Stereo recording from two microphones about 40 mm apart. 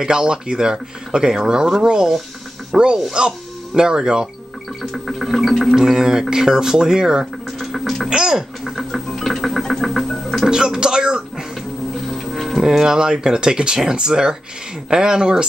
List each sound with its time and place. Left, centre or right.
0.0 s speech: centre
2.7 s gargling: centre
3.1 s speech: centre
4.9 s gargling: centre
5.8 s speech: centre
7.5 s a sound: centre
8.1 s speech: centre
8.7 s music: centre
10.5 s speech: centre
12.1 s music: centre
12.6 s speech: centre